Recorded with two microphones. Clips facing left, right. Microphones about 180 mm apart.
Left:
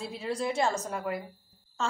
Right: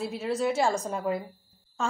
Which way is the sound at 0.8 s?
25° right (ahead or behind).